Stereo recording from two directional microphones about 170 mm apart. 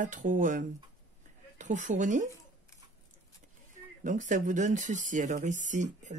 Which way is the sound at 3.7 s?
50° right (ahead or behind).